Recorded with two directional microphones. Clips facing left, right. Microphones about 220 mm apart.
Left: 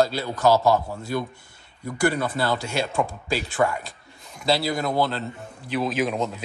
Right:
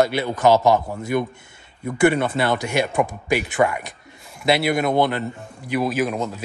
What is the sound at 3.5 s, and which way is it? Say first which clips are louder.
Speech: right 1 dB; 65° right (ahead or behind).